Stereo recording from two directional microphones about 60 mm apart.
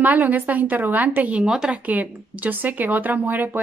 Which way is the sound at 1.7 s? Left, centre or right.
Right.